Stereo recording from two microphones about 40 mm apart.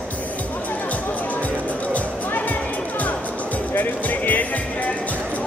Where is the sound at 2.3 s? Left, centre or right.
Left.